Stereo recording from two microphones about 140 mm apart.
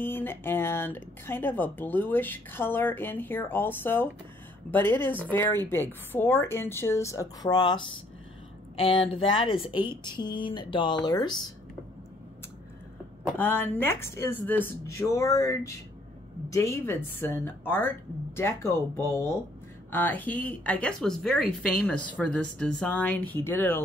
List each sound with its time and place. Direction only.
0.0 s speech: 15° left (ahead or behind); by 7.8 s 30° left (ahead or behind)
8.7 s speech: 40° left (ahead or behind)
13.4 s speech: 15° left (ahead or behind)